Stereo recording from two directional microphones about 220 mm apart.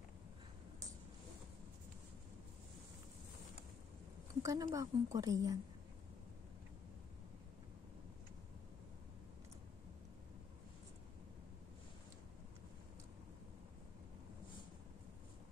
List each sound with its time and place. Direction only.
4.4 s a woman's voice: 15° right (ahead or behind)